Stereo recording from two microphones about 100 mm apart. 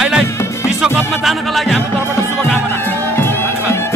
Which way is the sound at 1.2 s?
Centre (ahead or behind).